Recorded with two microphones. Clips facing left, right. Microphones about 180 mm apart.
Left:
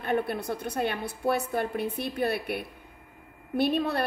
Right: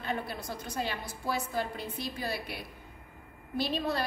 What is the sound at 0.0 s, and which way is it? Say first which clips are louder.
A woman's voice: left 8 dB; 60° left (ahead or behind).